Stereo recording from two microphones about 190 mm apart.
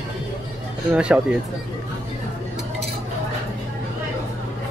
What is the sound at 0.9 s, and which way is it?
Speech, 5° right (ahead or behind).